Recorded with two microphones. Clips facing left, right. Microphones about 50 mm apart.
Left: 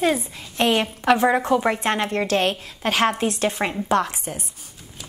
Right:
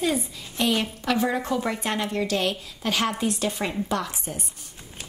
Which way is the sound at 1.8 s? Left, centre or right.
Left.